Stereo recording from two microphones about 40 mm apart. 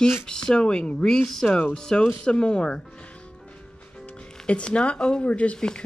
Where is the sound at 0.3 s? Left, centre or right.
Left.